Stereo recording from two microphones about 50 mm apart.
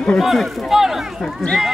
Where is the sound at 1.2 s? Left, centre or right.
Centre.